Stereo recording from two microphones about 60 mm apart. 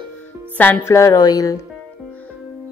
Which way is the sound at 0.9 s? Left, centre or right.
Left.